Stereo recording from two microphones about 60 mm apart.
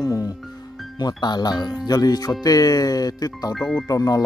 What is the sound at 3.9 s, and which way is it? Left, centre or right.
Speech, left.